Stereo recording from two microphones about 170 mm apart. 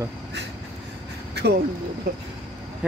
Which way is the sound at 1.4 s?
85° right.